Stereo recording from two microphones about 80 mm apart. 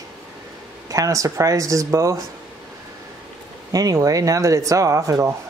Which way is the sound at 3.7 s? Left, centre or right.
Right.